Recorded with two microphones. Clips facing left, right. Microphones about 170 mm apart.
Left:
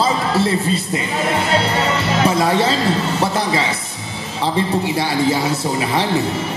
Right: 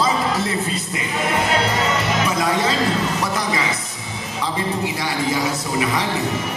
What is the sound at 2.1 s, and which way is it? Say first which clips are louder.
Music: left 5 dB; 30° left (ahead or behind).